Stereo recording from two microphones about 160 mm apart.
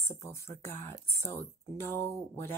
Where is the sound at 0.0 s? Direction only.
15° left (ahead or behind).